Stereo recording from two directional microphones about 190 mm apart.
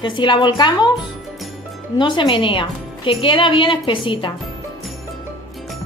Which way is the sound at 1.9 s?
25° left (ahead or behind).